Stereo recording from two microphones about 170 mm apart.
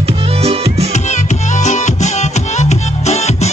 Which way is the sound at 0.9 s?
45° left (ahead or behind).